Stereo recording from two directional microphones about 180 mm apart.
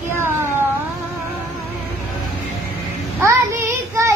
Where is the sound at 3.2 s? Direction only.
10° right (ahead or behind).